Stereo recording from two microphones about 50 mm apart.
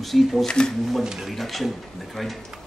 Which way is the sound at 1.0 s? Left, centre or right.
Centre.